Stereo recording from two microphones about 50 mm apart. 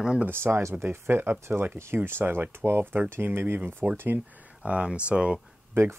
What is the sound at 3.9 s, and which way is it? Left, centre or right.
Speech, right.